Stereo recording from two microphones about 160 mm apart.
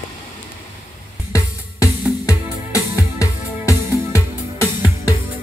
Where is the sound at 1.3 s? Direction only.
20° left (ahead or behind).